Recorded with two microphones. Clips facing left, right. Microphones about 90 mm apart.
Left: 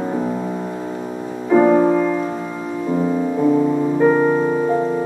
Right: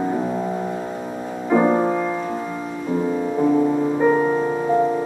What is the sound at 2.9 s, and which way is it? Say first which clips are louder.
Music: left 2 dB; 15° left (ahead or behind).